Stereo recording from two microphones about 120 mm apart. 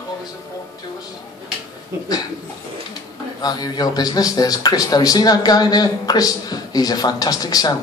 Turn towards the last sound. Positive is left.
turn(degrees=30)  # may be behind; listen again after turning